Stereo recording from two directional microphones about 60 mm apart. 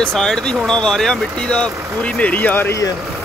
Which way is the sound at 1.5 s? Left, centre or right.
Left.